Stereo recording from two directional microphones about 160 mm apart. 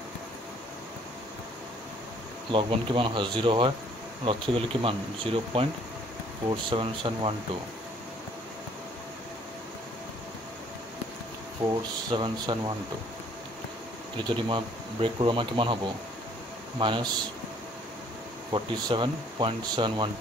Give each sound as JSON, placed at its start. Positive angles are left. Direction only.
{"t": 2.5, "sound": "speech", "side_deg": -30}
{"t": 12.1, "sound": "speech", "side_deg": -30}
{"t": 14.1, "sound": "speech", "side_deg": -30}
{"t": 18.5, "sound": "speech", "side_deg": -30}